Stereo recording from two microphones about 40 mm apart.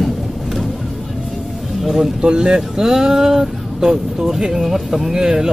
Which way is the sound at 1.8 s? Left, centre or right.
Centre.